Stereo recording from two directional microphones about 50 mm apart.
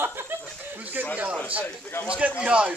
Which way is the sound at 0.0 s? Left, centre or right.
Right.